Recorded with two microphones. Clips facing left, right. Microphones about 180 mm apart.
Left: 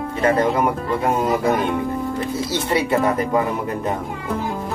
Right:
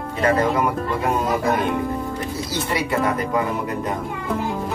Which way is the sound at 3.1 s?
25° left (ahead or behind).